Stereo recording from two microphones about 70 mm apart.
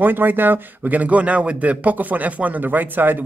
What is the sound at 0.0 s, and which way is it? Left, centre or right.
A man's voice, right.